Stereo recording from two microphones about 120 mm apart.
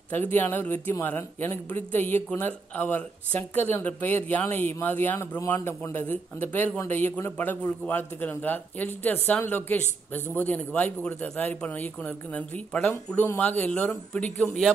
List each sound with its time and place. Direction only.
0.1 s speech: 15° left (ahead or behind)